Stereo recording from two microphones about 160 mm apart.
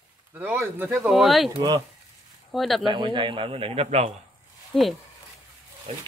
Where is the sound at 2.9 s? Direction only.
30° right (ahead or behind).